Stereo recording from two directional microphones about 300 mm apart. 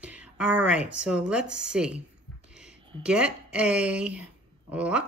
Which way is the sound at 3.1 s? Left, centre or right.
Centre.